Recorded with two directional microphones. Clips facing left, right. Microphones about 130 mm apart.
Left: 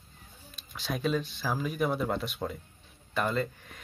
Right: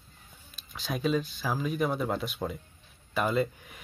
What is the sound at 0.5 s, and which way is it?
Speech, centre (ahead or behind).